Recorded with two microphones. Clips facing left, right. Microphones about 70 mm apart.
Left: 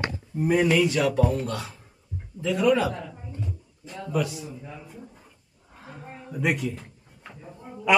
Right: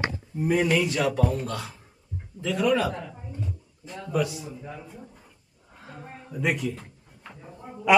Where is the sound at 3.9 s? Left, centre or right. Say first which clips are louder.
Even; centre.